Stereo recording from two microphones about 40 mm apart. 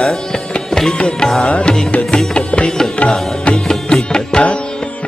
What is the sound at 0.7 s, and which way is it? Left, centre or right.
Music, centre.